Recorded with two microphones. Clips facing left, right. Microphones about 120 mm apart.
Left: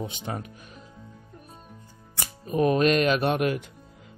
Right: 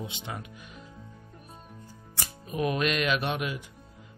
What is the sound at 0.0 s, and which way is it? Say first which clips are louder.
Speech: left 5 dB; 40° left (ahead or behind).